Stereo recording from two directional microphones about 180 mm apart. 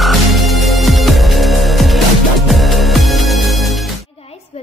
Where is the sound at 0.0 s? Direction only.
Centre (ahead or behind).